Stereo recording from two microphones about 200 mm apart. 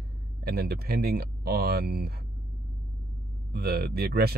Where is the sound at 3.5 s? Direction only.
50° right (ahead or behind).